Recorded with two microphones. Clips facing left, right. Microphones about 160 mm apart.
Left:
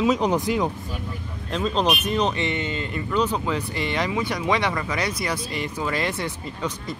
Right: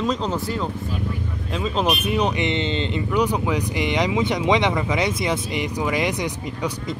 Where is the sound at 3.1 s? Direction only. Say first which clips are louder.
Right 1 dB; 10° right (ahead or behind).